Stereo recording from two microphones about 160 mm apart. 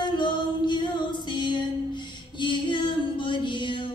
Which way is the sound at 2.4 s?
30° left (ahead or behind).